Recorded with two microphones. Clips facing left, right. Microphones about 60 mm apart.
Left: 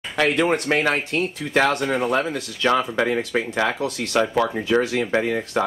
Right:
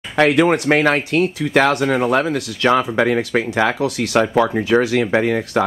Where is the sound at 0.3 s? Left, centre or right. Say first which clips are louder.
Right 4 dB; centre.